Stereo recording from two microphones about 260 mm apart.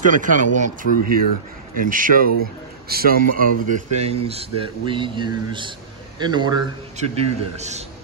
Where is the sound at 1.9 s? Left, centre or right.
Right.